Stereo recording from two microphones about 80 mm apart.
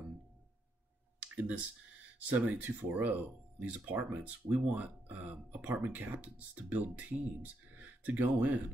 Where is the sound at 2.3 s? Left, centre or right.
Right.